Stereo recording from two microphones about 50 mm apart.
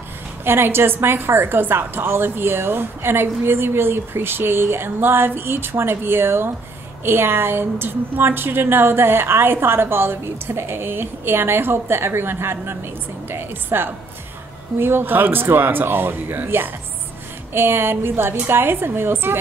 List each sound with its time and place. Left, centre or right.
0.5 s a woman's voice: right